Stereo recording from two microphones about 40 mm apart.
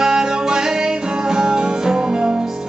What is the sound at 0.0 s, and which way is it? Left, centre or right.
Music, centre.